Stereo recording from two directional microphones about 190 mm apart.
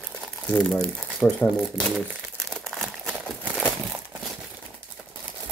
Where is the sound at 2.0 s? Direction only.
Centre (ahead or behind).